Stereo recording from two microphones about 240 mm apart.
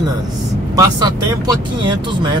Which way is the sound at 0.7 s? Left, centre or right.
Centre.